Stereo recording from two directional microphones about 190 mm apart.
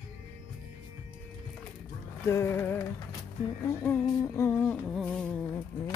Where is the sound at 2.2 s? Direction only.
15° left (ahead or behind).